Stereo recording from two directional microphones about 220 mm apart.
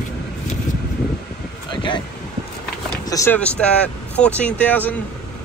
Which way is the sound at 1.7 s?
20° left (ahead or behind).